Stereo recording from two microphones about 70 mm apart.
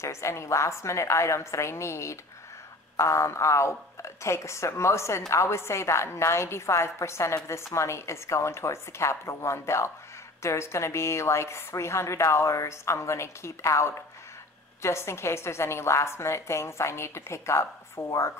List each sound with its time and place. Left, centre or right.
0.0 s a woman's voice: left